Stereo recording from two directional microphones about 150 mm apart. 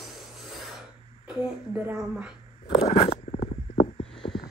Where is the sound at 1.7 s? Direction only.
10° right (ahead or behind).